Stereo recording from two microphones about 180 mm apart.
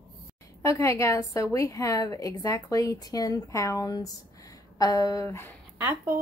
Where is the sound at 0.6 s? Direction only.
15° left (ahead or behind).